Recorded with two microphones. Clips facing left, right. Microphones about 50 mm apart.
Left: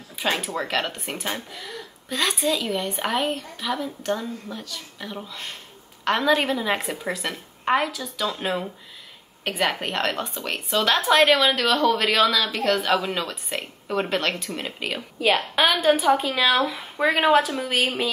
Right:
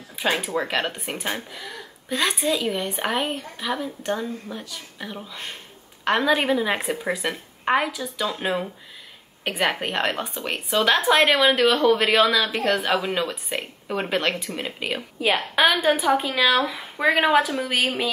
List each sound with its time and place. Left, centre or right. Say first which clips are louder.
0.1 s speech: right 2 dB; centre